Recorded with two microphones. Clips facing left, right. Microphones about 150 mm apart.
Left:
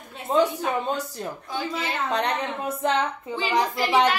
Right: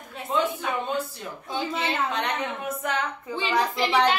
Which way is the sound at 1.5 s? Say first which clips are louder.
Right 2 dB; 25° right (ahead or behind).